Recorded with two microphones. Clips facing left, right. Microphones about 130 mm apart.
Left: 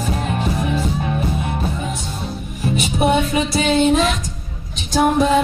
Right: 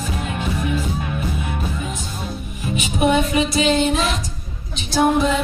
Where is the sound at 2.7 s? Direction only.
35° left (ahead or behind).